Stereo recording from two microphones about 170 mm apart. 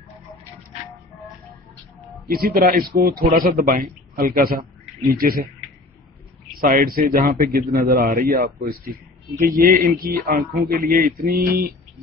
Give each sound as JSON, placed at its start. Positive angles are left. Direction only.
{"t": 2.2, "sound": "a man's voice", "side_deg": -60}
{"t": 6.6, "sound": "a man's voice", "side_deg": -60}